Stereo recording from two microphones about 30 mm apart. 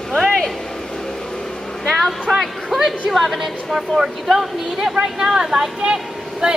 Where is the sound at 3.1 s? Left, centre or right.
Centre.